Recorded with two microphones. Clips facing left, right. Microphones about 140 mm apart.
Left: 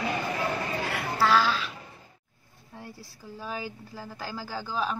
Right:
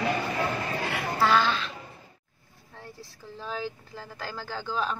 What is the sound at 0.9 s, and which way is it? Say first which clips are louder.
Speech: even; centre (ahead or behind).